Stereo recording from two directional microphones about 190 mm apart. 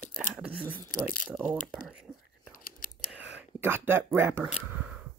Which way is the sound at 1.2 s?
Centre (ahead or behind).